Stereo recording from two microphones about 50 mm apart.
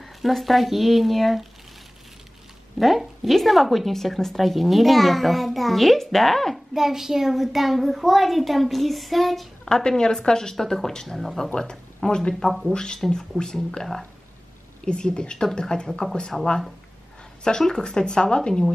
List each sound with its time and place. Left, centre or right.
0.0 s a woman's voice: centre
2.8 s a woman's voice: centre
6.7 s a woman's voice: centre
9.7 s speech: centre
12.7 s speech: centre
13.3 s speech: centre
14.9 s speech: centre
17.4 s speech: centre